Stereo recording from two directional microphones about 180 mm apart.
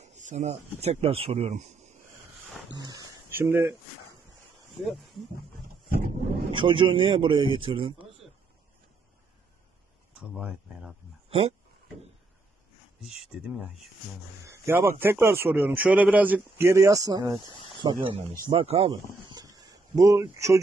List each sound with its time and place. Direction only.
0.0 s speech: 40° right (ahead or behind)
2.7 s speech: 20° right (ahead or behind)
4.6 s speech: centre (ahead or behind)
6.5 s speech: 30° right (ahead or behind)
10.1 s speech: 5° right (ahead or behind)
11.2 s speech: 30° right (ahead or behind)
13.0 s speech: centre (ahead or behind)
14.4 s a man's voice: 15° right (ahead or behind); by 18.9 s 30° right (ahead or behind)
19.2 s a sound: 25° right (ahead or behind)